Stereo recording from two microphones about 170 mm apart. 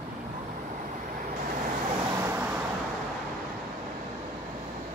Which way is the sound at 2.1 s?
15° right (ahead or behind).